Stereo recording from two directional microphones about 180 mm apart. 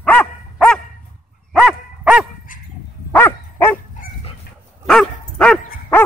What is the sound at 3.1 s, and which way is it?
Dog, 10° left (ahead or behind).